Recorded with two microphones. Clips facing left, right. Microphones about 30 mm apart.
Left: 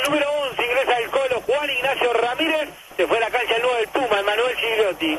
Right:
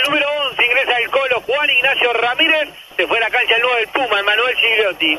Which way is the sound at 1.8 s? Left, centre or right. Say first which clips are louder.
Right 5 dB; right.